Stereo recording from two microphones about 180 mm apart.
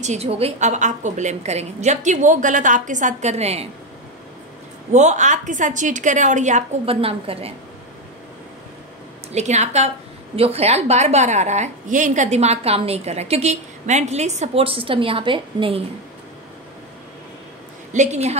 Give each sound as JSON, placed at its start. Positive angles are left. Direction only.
{"t": 0.0, "sound": "a woman's voice", "side_deg": -40}
{"t": 4.9, "sound": "a woman's voice", "side_deg": -40}
{"t": 9.3, "sound": "a woman's voice", "side_deg": -40}
{"t": 17.9, "sound": "a woman's voice", "side_deg": -40}